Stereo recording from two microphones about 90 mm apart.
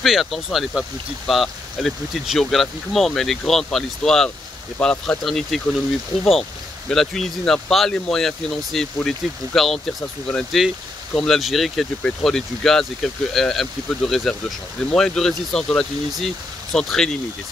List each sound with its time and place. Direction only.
0.0 s speech: centre (ahead or behind)
6.9 s speech: 5° left (ahead or behind)